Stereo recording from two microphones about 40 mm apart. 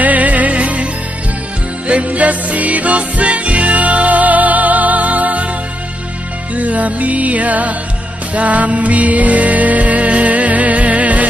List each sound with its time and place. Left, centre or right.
0.0 s music: right
1.9 s music: right
6.5 s music: right